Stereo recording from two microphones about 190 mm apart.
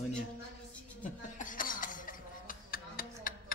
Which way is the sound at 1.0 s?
45° left (ahead or behind).